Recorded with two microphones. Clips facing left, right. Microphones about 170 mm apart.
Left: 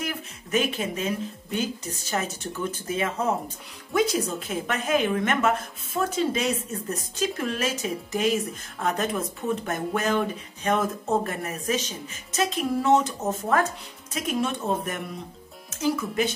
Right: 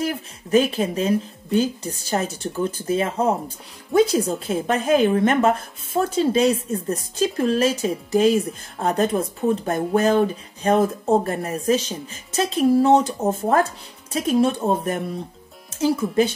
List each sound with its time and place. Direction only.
0.0 s speech: 35° right (ahead or behind)